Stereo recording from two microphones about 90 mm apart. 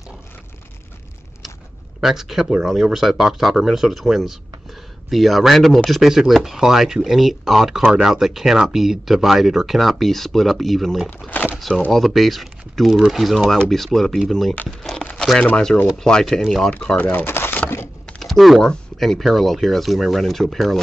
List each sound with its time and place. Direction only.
2.0 s speech: 5° right (ahead or behind)
11.2 s speech: 15° left (ahead or behind)
11.5 s speech: centre (ahead or behind)
14.8 s crumpling: 5° left (ahead or behind)
15.1 s speech: 10° left (ahead or behind)
16.8 s speech: 15° left (ahead or behind)
18.0 s speech: 5° left (ahead or behind)